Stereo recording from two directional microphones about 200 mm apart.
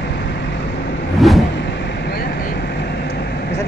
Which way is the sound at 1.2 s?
Centre (ahead or behind).